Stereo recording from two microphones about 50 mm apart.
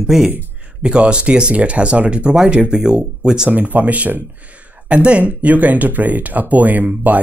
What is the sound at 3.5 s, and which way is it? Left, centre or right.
Speech, right.